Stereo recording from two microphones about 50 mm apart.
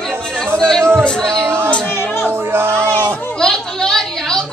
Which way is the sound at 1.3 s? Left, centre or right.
Right.